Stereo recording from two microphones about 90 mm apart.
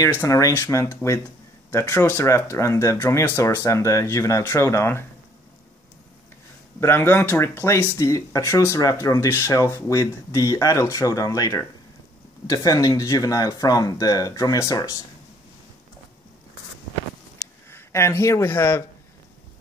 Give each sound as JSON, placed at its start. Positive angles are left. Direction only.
{"t": 0.2, "sound": "speech", "side_deg": 35}
{"t": 6.8, "sound": "speech", "side_deg": 25}
{"t": 17.6, "sound": "speech", "side_deg": 30}